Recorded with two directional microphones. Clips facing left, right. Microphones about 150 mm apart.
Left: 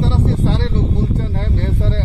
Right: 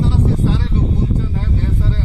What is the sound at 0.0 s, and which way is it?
Vehicle, 90° left.